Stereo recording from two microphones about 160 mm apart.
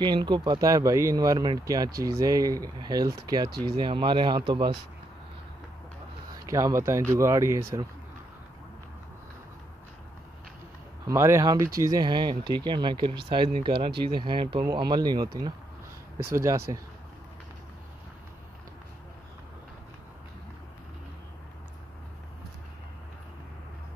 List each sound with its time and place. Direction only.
0.0 s speech: 30° right (ahead or behind)
6.4 s speech: 20° right (ahead or behind)
11.1 s speech: 20° right (ahead or behind)